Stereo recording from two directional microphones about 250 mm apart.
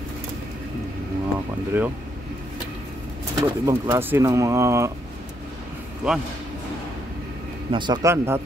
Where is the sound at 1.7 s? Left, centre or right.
Centre.